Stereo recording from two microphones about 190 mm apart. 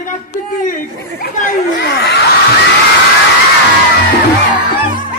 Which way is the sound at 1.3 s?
50° left (ahead or behind).